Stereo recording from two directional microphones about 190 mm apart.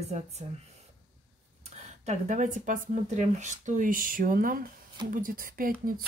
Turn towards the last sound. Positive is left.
turn(degrees=-50)  # may be behind; listen again after turning